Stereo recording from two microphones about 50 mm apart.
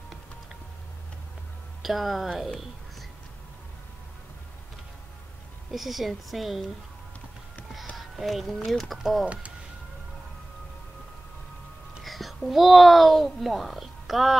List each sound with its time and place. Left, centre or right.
1.8 s speech: centre
5.7 s speech: centre
7.9 s speech: centre
8.9 s speech: centre
9.2 s speech: right
12.0 s speech: centre